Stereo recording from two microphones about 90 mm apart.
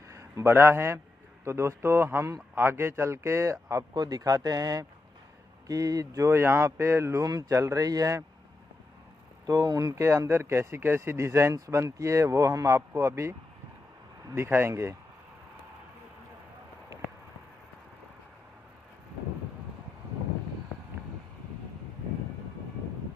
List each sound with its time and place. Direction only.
0.1 s a man's voice: 35° right (ahead or behind)
3.9 s speech: 45° right (ahead or behind)
9.5 s speech: 45° right (ahead or behind); by 15.0 s 30° right (ahead or behind)